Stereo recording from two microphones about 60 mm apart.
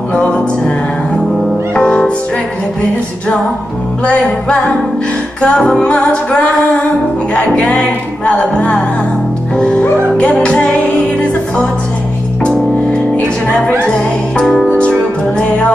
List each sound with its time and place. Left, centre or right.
0.1 s music: centre
1.8 s music: centre
4.0 s music: centre
7.3 s music: left
12.4 s music: centre
14.7 s music: centre